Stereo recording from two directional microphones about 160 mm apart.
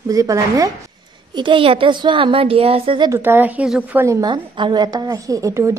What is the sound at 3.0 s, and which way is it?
Speech, 15° right (ahead or behind).